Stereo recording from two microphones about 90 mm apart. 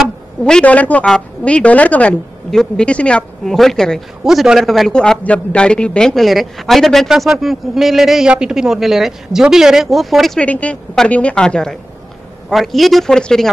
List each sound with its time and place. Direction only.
0.4 s speech: 10° left (ahead or behind)
4.2 s speech: 5° right (ahead or behind)
10.4 s speech: 15° left (ahead or behind)